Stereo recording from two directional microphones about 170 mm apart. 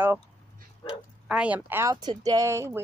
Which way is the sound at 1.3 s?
10° right (ahead or behind).